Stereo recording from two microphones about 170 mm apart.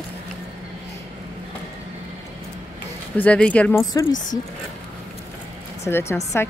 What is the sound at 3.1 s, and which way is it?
Speech, 10° left (ahead or behind).